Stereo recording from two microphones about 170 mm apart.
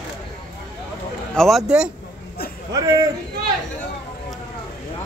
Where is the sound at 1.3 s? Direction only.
Centre (ahead or behind).